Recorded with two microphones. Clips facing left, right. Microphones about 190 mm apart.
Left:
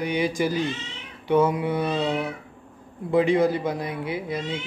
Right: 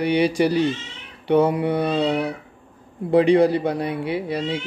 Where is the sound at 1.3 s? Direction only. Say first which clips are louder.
Right 3 dB; 60° right (ahead or behind).